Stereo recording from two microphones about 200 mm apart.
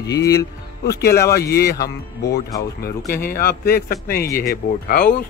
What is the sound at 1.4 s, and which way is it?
A man's voice, 50° left (ahead or behind).